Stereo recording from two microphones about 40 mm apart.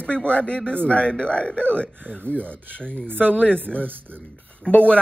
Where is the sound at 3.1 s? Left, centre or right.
Right.